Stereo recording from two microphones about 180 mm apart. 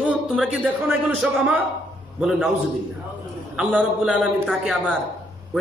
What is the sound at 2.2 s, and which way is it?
Speech, 5° right (ahead or behind).